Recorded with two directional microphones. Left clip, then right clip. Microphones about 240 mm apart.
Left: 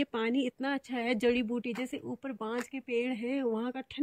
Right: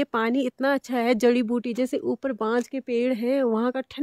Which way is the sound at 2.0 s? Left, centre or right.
Right.